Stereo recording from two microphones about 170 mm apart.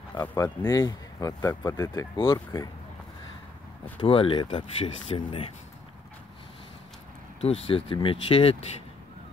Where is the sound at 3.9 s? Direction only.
30° left (ahead or behind).